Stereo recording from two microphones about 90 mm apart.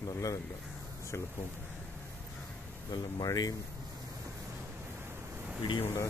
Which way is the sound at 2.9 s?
45° left (ahead or behind).